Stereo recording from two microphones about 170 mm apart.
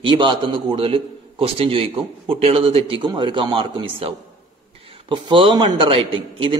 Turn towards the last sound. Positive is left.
turn(degrees=-30)  # may be behind; listen again after turning